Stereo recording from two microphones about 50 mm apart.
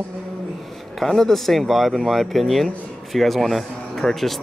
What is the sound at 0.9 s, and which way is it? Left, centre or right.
Speech, centre.